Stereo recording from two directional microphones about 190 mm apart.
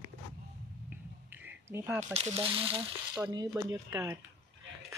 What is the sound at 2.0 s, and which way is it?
Speech, 30° right (ahead or behind).